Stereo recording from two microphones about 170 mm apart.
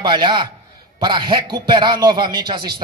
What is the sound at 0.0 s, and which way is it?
A man's voice, 25° right (ahead or behind).